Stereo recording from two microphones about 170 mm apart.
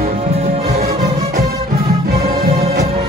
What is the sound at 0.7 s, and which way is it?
Music, 65° right (ahead or behind).